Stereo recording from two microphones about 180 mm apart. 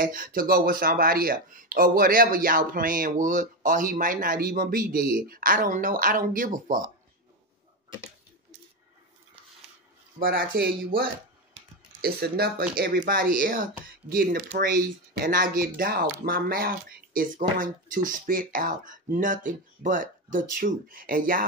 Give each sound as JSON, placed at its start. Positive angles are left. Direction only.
{"t": 0.0, "sound": "speech", "side_deg": -50}
{"t": 10.1, "sound": "speech", "side_deg": -55}